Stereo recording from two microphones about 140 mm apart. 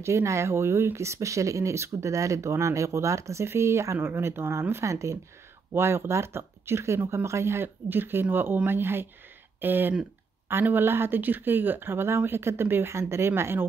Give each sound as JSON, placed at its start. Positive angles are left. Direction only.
{"t": 0.0, "sound": "speech", "side_deg": -20}